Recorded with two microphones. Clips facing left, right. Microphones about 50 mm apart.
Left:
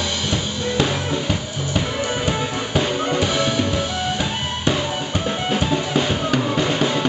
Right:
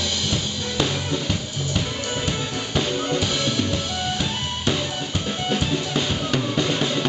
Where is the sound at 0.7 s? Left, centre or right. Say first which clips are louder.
Left 3 dB; centre.